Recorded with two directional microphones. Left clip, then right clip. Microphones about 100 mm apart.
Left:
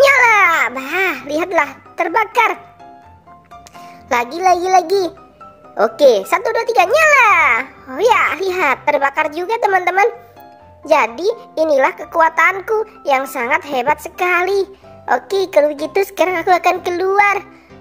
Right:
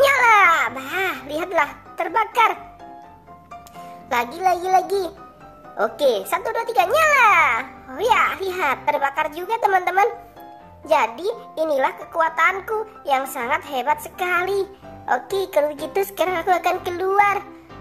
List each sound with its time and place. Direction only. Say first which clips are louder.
0.0 s babbling: left 4 dB; 30° left (ahead or behind)
3.8 s a child's voice: left 5 dB; 35° left (ahead or behind)